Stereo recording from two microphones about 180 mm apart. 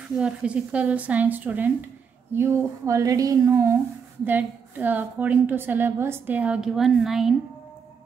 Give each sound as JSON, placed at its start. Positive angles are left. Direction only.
{"t": 0.2, "sound": "a woman's voice", "side_deg": -5}